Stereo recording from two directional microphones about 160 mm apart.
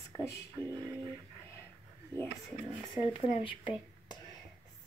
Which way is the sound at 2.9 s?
30° left (ahead or behind).